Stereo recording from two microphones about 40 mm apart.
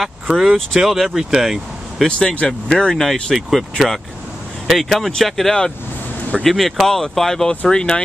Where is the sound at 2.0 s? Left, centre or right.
Left.